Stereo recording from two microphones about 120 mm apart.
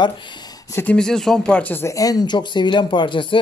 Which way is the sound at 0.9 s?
5° left (ahead or behind).